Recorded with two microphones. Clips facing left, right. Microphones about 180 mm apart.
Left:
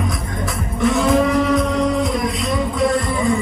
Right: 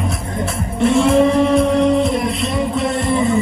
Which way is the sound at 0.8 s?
30° right (ahead or behind).